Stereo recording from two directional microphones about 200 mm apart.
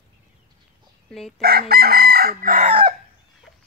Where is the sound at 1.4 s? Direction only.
50° right (ahead or behind); by 2.9 s 30° right (ahead or behind).